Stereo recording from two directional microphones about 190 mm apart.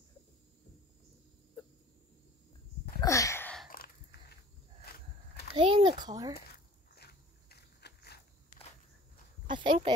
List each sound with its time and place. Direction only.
3.0 s a sound: 15° left (ahead or behind)
3.7 s a sound: 50° left (ahead or behind)
5.5 s a child's voice: 25° right (ahead or behind)
7.0 s walk: 55° left (ahead or behind)
8.5 s walk: 40° left (ahead or behind)
9.5 s speech: 25° right (ahead or behind)